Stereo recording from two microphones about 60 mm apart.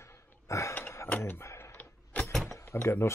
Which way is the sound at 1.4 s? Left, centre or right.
Left.